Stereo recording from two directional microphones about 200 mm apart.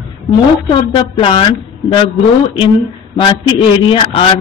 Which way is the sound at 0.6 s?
25° left (ahead or behind).